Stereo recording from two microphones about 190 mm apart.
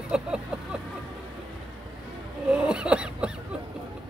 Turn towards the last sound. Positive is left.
turn(degrees=-5)  # may be behind; listen again after turning